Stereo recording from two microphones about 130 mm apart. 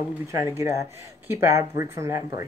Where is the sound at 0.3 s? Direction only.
20° right (ahead or behind).